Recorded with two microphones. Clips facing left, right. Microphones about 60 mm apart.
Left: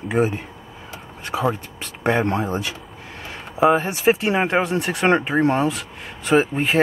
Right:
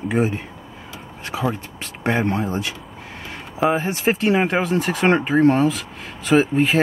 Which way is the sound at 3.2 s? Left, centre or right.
Centre.